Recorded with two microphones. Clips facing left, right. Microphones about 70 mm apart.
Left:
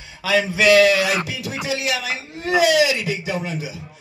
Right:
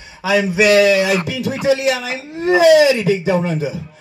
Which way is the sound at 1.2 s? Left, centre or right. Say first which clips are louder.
Right 9 dB; right.